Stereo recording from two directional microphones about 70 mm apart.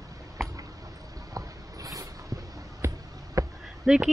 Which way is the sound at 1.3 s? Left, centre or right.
Right.